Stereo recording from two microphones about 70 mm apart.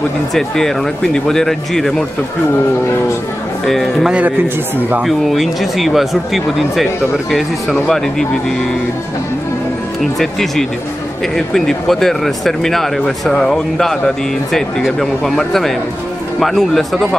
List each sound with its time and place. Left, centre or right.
0.3 s speech: centre
3.6 s speech: centre
4.7 s speech: right
5.0 s speech: centre
10.1 s speech: centre